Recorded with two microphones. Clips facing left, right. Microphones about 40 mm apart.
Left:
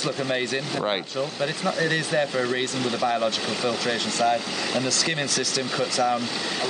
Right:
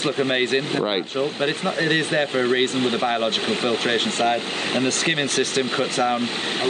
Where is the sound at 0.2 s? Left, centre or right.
Right.